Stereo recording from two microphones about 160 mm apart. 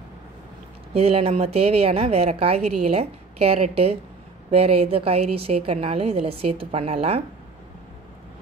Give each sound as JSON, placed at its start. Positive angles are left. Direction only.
{"t": 0.9, "sound": "a woman's voice", "side_deg": -40}